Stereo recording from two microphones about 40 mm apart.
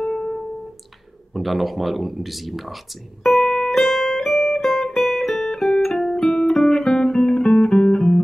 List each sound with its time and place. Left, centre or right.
0.0 s music: left
1.3 s speech: centre
3.3 s music: centre
7.7 s music: left